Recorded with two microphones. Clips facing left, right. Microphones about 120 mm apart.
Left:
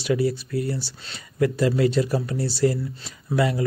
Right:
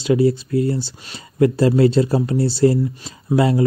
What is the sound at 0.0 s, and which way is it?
Speech, 25° right (ahead or behind).